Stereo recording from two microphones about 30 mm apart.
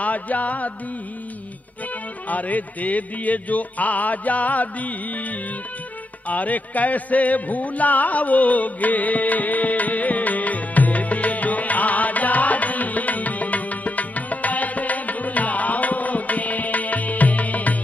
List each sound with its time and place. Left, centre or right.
0.0 s music: left
2.2 s music: left
6.2 s music: left